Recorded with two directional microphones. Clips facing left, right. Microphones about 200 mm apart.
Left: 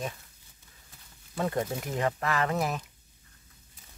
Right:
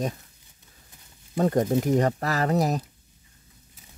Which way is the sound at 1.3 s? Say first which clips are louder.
Right 8 dB; 40° right (ahead or behind).